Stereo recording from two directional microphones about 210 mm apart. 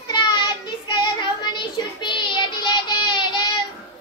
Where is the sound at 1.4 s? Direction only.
20° left (ahead or behind).